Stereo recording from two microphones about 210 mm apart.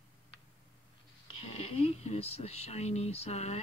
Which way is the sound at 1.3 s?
25° left (ahead or behind).